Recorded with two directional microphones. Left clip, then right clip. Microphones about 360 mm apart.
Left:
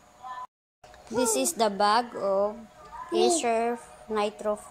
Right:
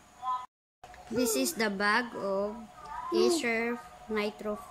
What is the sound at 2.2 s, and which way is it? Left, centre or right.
Speech, left.